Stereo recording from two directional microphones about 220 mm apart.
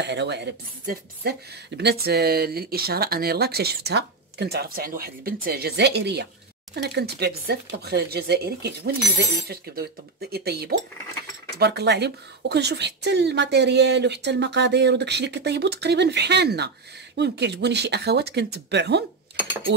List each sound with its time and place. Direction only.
0.0 s speech: 50° right (ahead or behind)